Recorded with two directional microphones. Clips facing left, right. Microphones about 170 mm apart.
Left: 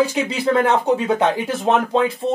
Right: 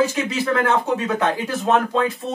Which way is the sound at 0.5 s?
20° left (ahead or behind).